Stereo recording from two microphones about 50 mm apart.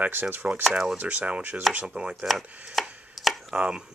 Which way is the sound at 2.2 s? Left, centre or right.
Centre.